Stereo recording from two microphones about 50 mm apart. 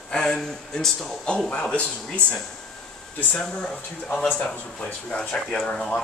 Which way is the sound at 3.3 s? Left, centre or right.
Centre.